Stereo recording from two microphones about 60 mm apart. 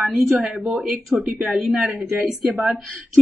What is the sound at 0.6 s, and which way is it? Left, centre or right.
Speech, right.